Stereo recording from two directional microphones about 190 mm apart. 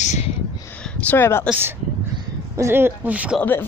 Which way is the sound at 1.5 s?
10° right (ahead or behind).